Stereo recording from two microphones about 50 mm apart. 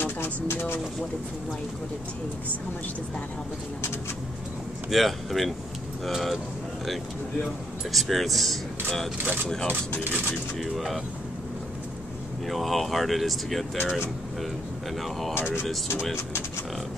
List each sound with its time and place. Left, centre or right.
0.0 s speech: left
4.9 s speech: centre
7.9 s speech: centre
9.2 s speech: right
10.6 s speech: centre
12.4 s speech: centre
15.3 s speech: left